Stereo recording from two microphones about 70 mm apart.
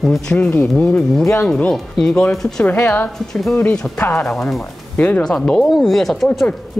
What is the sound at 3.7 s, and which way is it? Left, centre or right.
Speech, centre.